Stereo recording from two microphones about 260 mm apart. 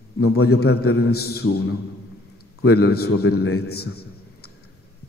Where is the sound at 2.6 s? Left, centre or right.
Left.